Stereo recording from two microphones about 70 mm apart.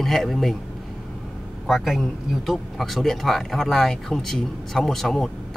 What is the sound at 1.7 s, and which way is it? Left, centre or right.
A man's voice, centre.